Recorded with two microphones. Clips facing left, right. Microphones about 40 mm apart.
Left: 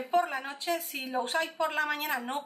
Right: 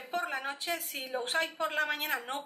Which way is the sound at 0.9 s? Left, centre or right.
Centre.